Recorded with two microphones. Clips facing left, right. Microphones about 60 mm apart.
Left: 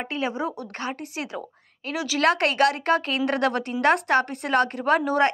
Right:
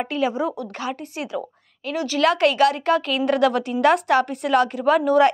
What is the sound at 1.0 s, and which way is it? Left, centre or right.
Speech, left.